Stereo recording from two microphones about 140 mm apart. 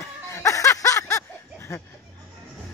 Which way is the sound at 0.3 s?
20° left (ahead or behind).